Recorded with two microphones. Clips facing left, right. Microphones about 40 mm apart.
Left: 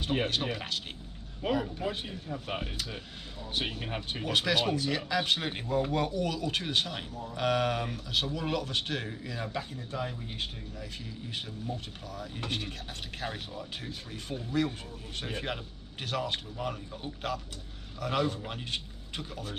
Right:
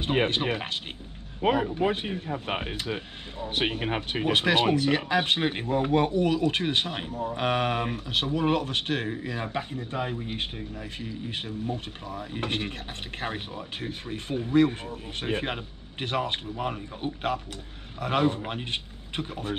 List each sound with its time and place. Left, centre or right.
0.0 s speech: right